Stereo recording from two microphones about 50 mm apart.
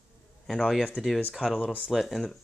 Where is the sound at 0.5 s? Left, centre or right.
Centre.